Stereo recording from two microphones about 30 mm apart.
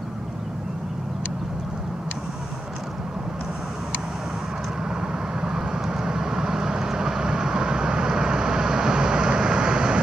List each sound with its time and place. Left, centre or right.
4.8 s vehicle: centre